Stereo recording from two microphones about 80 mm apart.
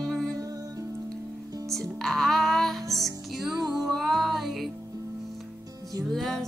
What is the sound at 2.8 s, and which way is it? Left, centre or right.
Music, right.